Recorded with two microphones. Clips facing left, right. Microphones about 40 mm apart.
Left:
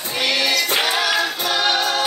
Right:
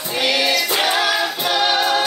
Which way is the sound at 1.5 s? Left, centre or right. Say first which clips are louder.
Right 3 dB; centre.